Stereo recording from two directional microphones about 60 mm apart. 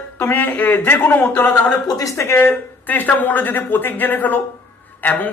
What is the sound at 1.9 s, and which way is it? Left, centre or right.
Speech, left.